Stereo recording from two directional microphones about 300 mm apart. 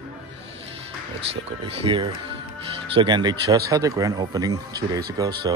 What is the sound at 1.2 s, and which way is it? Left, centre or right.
Speech, right.